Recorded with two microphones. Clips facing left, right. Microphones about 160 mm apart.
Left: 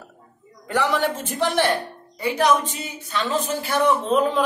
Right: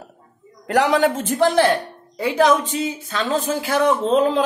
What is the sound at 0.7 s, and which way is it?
Speech, 90° right.